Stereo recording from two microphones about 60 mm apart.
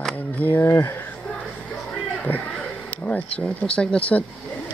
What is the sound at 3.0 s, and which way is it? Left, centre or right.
Speech, left.